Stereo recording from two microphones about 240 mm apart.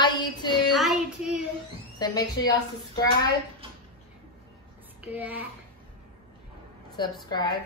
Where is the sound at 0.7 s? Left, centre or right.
Centre.